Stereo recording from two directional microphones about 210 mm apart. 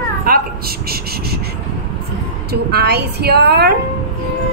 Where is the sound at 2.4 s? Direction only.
50° right (ahead or behind).